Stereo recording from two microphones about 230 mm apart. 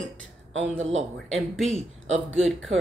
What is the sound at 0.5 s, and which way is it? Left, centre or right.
Speech, right.